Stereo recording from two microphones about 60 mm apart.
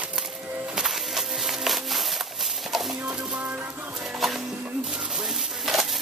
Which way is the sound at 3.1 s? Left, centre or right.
Right.